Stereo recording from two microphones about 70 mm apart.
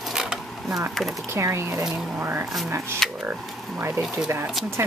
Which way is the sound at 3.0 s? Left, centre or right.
Centre.